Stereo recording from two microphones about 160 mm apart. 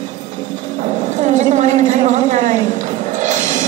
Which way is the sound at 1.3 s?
50° right (ahead or behind).